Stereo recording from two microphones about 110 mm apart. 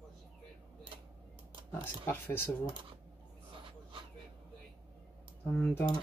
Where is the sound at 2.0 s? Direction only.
20° left (ahead or behind).